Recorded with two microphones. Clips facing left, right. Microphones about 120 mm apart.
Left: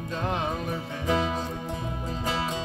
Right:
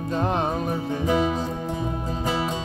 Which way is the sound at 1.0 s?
10° right (ahead or behind).